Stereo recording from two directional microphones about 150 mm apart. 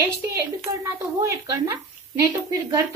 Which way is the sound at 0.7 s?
20° right (ahead or behind).